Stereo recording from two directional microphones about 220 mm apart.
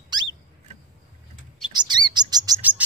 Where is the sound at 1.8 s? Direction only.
20° right (ahead or behind).